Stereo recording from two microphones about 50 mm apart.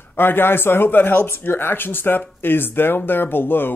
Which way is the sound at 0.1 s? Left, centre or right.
Left.